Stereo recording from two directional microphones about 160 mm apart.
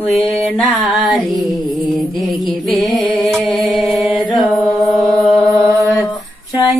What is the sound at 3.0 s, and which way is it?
Mantra, centre (ahead or behind).